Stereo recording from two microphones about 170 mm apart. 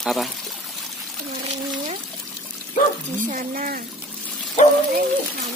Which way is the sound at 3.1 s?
50° right (ahead or behind).